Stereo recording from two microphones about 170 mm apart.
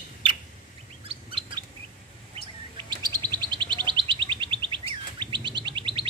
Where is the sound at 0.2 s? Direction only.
30° right (ahead or behind).